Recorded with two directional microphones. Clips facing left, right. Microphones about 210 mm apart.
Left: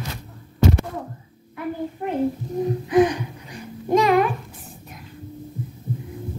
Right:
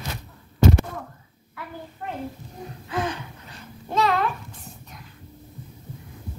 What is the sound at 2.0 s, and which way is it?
Child singing, 20° left (ahead or behind).